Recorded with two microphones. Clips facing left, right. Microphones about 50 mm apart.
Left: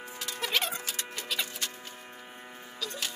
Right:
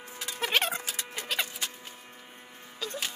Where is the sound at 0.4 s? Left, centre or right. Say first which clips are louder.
Right 3 dB; right.